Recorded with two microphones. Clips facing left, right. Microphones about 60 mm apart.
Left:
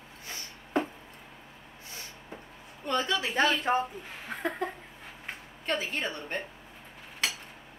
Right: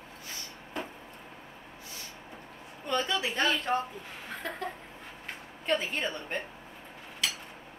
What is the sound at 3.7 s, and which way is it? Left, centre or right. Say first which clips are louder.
Speech: left 2 dB; left.